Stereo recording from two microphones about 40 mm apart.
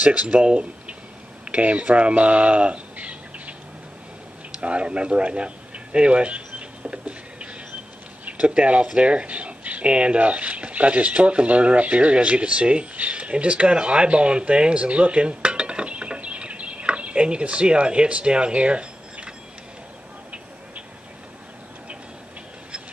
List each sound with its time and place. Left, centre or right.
0.0 s speech: right
4.6 s a sound: right
8.3 s speech: right